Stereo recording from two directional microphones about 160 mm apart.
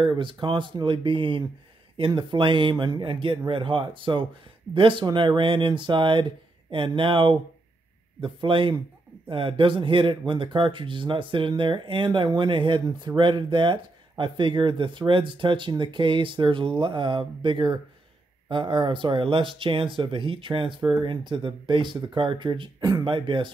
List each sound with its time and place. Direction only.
0.0 s speech: 30° right (ahead or behind)